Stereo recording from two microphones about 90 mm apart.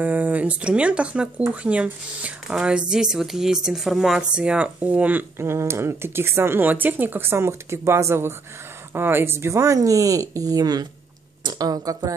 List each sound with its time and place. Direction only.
0.0 s speech: 20° right (ahead or behind)
5.4 s speech: 30° right (ahead or behind)